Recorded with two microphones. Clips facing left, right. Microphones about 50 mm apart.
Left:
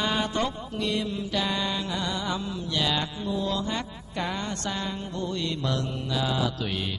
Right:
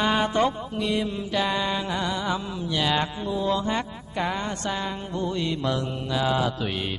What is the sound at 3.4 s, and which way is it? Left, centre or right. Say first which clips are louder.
Speech: right 7 dB; right.